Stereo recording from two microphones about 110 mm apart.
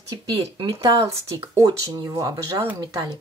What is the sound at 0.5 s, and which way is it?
Speech, 30° right (ahead or behind).